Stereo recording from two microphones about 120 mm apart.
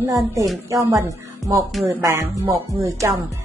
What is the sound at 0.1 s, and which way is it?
Speech, 30° right (ahead or behind).